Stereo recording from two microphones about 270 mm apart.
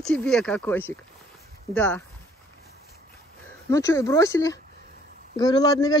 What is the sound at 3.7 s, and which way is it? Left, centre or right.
Speech, centre.